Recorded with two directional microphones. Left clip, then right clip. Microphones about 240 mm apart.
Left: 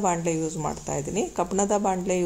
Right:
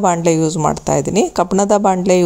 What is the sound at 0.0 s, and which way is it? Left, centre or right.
A woman's voice, right.